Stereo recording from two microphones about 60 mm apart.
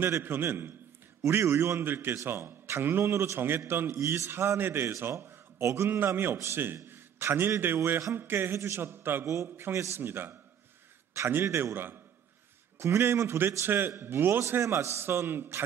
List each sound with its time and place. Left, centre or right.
0.2 s a man's voice: right
1.2 s a man's voice: right
3.1 s a man's voice: right
3.3 s a man's voice: right
4.0 s a man's voice: right
4.3 s a man's voice: right
5.6 s a man's voice: right
5.9 s a man's voice: right
6.3 s a man's voice: right
6.6 s a man's voice: right
9.2 s a man's voice: right